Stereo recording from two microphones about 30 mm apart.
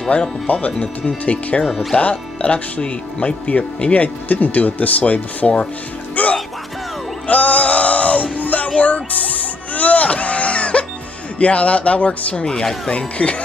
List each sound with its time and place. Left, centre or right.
0.5 s speech: left
1.3 s speech: left
1.7 s speech: centre
2.0 s speech: left
5.0 s speech: left
7.2 s music: left
8.4 s music: left
8.6 s a sound: left
11.3 s speech: left